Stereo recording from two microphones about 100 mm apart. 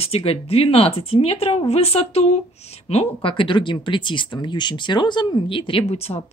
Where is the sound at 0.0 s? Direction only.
80° left.